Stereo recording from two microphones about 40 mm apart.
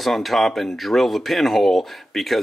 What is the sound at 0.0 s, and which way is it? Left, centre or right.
Speech, centre.